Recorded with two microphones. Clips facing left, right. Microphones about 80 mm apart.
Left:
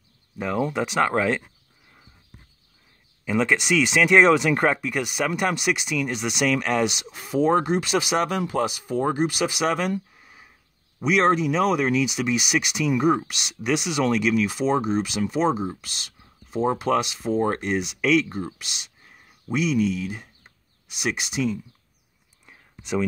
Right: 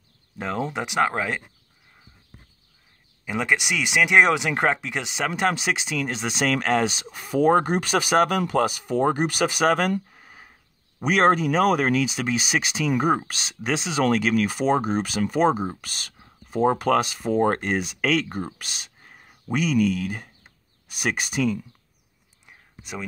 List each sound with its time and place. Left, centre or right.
0.4 s speech: right
3.3 s speech: centre; by 6.9 s right
7.3 s speech: right
14.0 s speech: right
17.3 s speech: right
17.6 s speech: right